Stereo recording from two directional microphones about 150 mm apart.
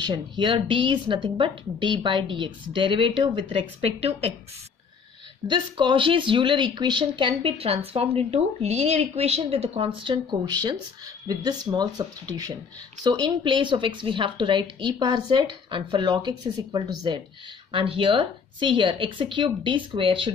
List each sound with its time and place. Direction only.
0.0 s speech: 30° right (ahead or behind)
5.5 s speech: 30° right (ahead or behind)